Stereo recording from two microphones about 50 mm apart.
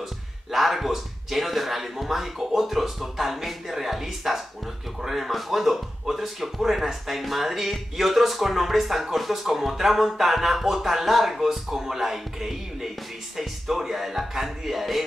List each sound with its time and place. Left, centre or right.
0.5 s speech: centre